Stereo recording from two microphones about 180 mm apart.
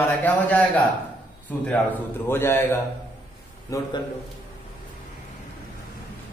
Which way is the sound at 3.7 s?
20° left (ahead or behind).